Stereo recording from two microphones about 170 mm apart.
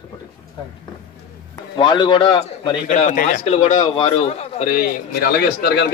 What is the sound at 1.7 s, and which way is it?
A man's voice, 30° left (ahead or behind).